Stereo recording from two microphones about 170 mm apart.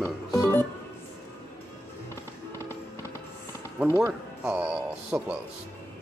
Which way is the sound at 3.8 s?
15° right (ahead or behind).